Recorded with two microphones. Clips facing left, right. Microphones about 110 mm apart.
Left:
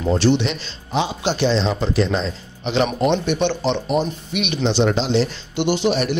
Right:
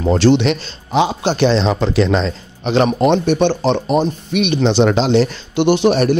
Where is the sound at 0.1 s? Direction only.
80° right.